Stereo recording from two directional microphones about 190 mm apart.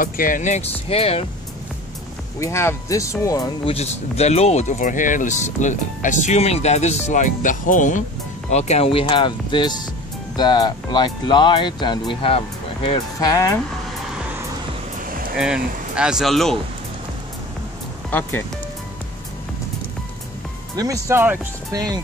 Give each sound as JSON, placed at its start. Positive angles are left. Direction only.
{"t": 0.0, "sound": "speech", "side_deg": 45}
{"t": 2.4, "sound": "speech", "side_deg": 15}
{"t": 3.7, "sound": "speech", "side_deg": 35}
{"t": 15.3, "sound": "speech", "side_deg": -5}
{"t": 20.7, "sound": "speech", "side_deg": -20}